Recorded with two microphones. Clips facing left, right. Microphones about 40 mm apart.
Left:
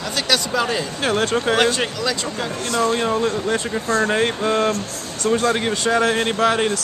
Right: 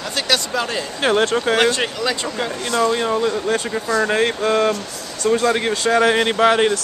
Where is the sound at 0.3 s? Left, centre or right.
Centre.